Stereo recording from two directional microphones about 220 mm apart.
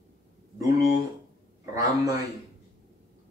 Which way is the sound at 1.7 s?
15° right (ahead or behind).